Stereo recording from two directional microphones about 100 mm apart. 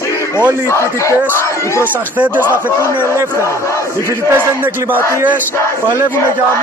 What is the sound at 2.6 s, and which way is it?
Speech, 25° left (ahead or behind).